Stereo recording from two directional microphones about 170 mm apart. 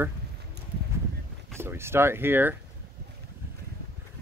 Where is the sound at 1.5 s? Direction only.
15° right (ahead or behind).